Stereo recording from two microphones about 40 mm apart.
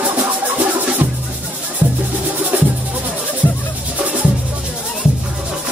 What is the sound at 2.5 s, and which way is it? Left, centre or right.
Music, right.